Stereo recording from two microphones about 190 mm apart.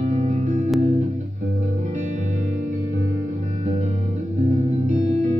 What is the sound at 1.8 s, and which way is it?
Music, 40° right (ahead or behind).